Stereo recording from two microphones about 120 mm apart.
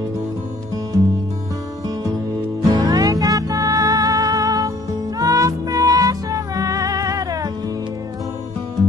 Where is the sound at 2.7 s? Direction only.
30° right (ahead or behind).